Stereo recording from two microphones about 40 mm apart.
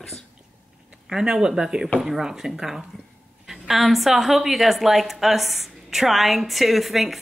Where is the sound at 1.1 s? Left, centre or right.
Centre.